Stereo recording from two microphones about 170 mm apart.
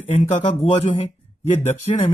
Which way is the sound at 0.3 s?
35° left (ahead or behind).